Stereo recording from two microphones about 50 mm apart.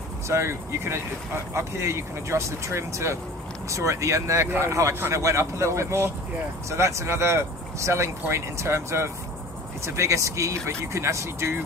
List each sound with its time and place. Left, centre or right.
0.3 s speech: right
4.6 s speech: right
9.8 s speech: right